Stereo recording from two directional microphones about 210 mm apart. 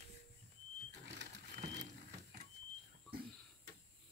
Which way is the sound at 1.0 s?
55° right (ahead or behind).